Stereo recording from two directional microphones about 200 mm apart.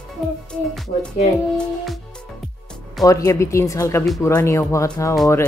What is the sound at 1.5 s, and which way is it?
Speech, centre (ahead or behind).